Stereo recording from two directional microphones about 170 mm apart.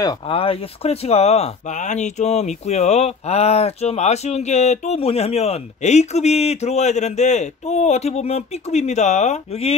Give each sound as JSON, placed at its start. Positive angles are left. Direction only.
{"t": 0.0, "sound": "speech", "side_deg": 30}